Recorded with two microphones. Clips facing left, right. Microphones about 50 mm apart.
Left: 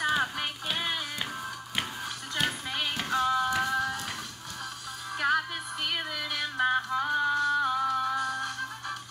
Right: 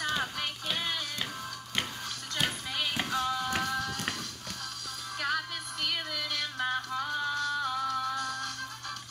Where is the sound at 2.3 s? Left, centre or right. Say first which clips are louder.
Left 2 dB; centre.